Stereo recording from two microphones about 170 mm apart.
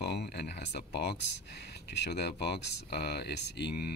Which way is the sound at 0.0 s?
75° left (ahead or behind).